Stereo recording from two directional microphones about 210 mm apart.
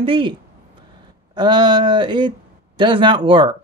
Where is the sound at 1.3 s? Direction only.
20° right (ahead or behind).